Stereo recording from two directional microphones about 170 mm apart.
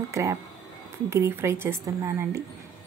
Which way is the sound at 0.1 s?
20° right (ahead or behind).